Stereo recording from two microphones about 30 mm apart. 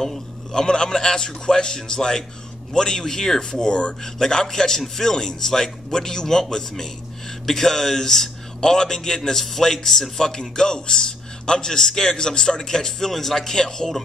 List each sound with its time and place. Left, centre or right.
0.5 s a man's voice: left
3.6 s speech: left
4.3 s a man's voice: left
7.4 s a man's voice: centre